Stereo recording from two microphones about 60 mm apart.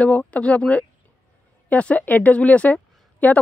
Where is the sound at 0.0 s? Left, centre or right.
Left.